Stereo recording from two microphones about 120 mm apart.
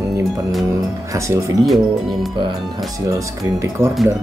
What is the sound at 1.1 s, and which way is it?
Speech, 25° right (ahead or behind).